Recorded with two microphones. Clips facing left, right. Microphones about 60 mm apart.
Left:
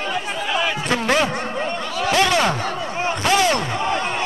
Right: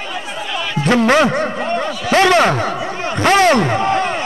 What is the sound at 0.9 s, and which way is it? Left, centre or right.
Speech, right.